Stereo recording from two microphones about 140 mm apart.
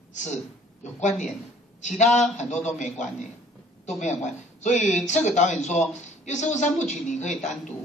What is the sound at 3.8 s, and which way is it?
Speech, 60° left (ahead or behind).